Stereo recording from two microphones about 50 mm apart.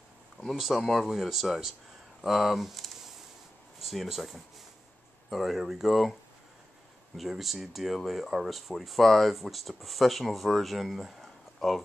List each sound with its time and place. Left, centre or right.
0.5 s speech: centre
7.2 s speech: centre